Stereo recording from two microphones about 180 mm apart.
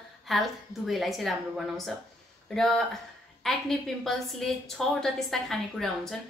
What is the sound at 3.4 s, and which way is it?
A woman's voice, centre (ahead or behind).